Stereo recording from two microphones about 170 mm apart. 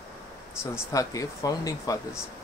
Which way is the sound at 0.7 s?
20° left (ahead or behind).